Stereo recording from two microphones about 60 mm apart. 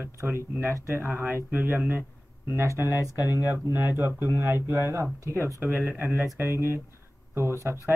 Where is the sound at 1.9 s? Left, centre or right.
Right.